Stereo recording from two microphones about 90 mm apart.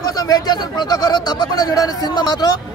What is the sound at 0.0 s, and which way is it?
Speech, 45° left (ahead or behind).